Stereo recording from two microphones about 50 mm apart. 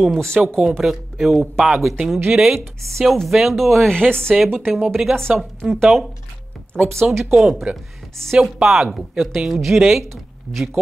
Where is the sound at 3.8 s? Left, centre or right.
Centre.